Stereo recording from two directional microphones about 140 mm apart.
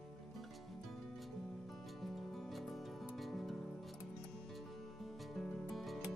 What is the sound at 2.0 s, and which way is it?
Music, centre (ahead or behind).